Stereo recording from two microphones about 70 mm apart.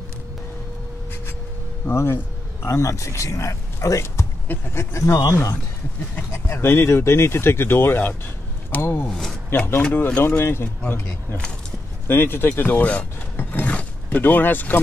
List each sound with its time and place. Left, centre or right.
1.9 s speech: left
6.3 s speech: left
9.1 s a sound: centre
9.9 s speech: left
10.2 s speech: left
12.1 s speech: left